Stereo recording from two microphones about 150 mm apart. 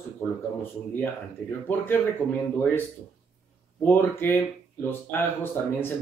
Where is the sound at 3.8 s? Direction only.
15° left (ahead or behind).